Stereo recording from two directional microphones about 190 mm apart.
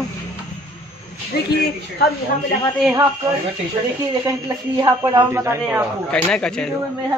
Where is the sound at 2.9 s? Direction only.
15° right (ahead or behind).